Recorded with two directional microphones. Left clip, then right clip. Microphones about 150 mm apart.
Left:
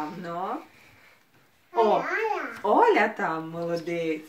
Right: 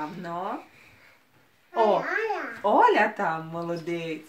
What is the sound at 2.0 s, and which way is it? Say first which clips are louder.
Babbling: even; centre (ahead or behind).